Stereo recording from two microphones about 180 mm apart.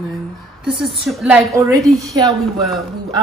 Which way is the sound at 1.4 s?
15° right (ahead or behind).